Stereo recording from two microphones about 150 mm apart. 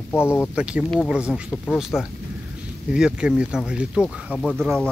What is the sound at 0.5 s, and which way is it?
Speech, 5° right (ahead or behind).